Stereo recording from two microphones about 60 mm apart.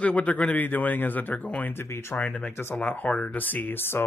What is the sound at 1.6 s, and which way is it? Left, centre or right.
Speech, left.